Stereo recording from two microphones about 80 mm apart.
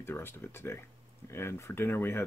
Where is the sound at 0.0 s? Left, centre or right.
Left.